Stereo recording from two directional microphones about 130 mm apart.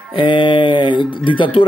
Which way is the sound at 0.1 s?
40° left (ahead or behind).